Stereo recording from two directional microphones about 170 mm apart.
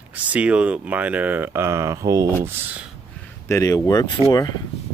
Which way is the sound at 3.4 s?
20° left (ahead or behind).